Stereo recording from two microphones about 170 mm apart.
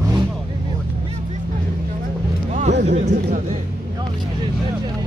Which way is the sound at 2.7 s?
80° right.